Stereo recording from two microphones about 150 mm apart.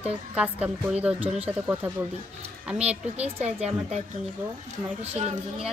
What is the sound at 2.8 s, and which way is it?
Speech, 10° right (ahead or behind).